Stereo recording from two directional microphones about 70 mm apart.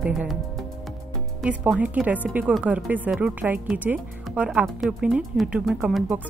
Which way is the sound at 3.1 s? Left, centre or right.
Centre.